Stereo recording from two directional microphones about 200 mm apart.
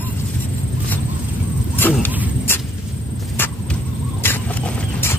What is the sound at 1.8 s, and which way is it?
Dog, 10° left (ahead or behind).